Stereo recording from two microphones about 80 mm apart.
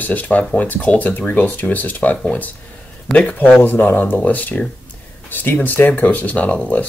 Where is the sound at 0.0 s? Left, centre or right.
Left.